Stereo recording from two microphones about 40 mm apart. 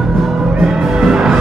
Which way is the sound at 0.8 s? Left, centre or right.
Centre.